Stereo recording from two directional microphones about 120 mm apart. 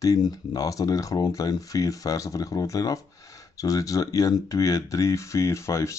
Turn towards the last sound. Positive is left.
turn(degrees=25)  # may be behind; listen again after turning